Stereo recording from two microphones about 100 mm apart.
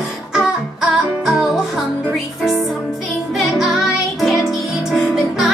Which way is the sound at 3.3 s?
Centre (ahead or behind).